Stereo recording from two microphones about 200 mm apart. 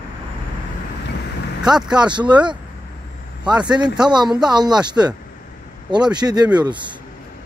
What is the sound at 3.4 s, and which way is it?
Speech, 5° right (ahead or behind).